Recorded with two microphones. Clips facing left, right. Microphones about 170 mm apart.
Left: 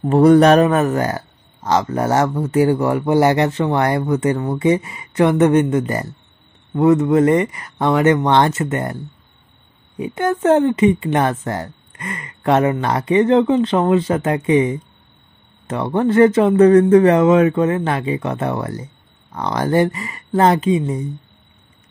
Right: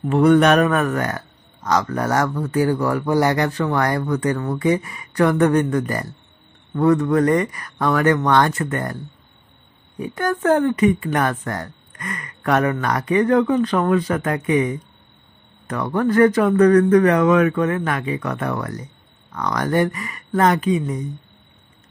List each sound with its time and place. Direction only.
0.0 s speech: 35° left (ahead or behind)